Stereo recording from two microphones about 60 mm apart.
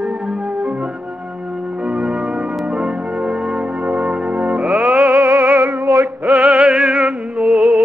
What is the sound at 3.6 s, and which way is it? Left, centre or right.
Church bell, centre.